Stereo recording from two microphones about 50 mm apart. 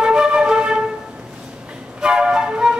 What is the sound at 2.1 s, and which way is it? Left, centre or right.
Flute, centre.